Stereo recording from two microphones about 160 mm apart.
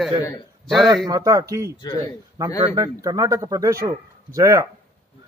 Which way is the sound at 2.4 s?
25° right (ahead or behind).